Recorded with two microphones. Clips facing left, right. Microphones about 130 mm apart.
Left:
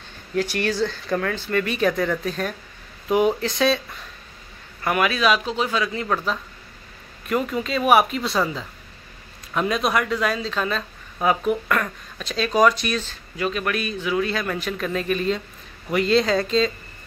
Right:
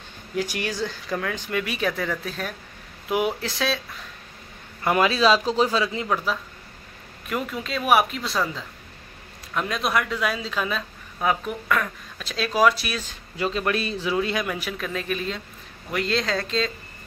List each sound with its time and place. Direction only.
0.4 s speech: 15° right (ahead or behind)
4.8 s speech: 25° right (ahead or behind)
6.0 s speech: 5° right (ahead or behind)
11.1 s speech: 5° left (ahead or behind)
13.4 s speech: 25° right (ahead or behind); by 16.7 s centre (ahead or behind)